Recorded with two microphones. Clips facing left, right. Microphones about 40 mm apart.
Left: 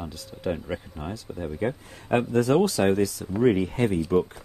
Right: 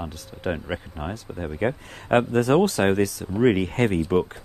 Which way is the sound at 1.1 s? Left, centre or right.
Right.